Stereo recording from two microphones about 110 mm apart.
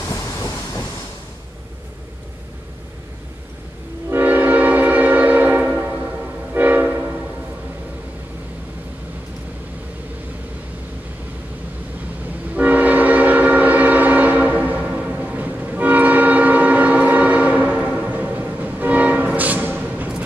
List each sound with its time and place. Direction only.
0.1 s train: 30° left (ahead or behind)
4.1 s train: 15° right (ahead or behind)
12.5 s train: 15° right (ahead or behind)